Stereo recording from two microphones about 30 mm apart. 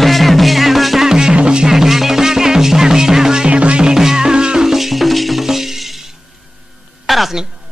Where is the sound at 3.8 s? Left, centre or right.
Centre.